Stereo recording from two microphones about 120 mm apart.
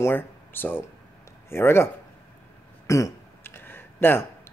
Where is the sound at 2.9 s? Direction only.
25° left (ahead or behind).